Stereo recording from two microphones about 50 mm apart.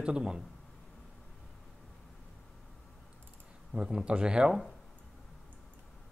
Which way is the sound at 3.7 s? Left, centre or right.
Centre.